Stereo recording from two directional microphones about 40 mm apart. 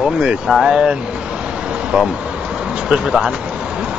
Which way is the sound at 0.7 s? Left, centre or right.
Centre.